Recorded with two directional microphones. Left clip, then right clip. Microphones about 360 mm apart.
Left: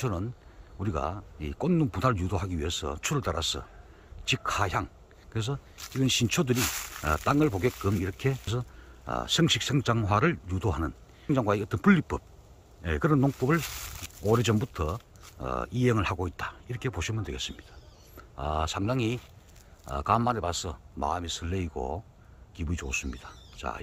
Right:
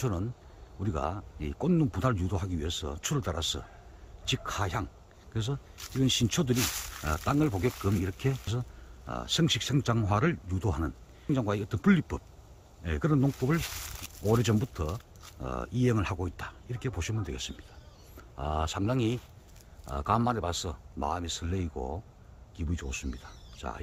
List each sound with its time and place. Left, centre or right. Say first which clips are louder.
0.0 s speech: left 1 dB; centre